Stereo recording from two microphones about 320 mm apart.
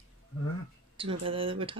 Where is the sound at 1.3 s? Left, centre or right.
Centre.